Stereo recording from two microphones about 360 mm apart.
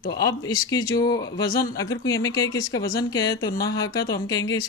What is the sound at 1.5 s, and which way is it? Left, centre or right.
Speech, left.